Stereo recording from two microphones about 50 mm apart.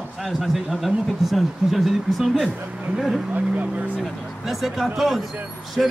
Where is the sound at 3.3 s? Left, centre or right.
Right.